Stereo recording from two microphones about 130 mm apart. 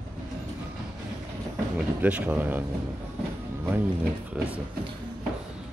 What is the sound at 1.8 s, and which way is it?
Speech, 10° right (ahead or behind).